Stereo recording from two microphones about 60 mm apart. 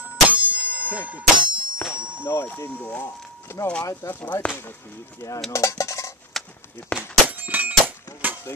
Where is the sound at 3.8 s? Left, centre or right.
Left.